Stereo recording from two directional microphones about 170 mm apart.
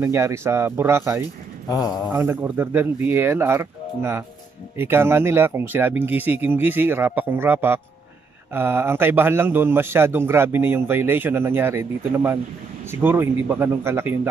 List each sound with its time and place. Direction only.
0.0 s a man's voice: 15° right (ahead or behind)
1.7 s a man's voice: 25° left (ahead or behind)
2.1 s a man's voice: 15° right (ahead or behind)